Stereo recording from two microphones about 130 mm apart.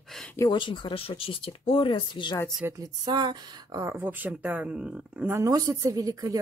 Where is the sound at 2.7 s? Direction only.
30° right (ahead or behind); by 5.3 s 10° right (ahead or behind).